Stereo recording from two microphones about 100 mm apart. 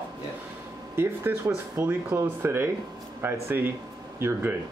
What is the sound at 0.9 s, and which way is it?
Speech, 25° right (ahead or behind).